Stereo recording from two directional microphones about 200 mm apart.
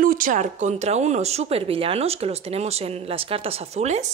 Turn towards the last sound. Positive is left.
turn(degrees=-35)  # may be behind; listen again after turning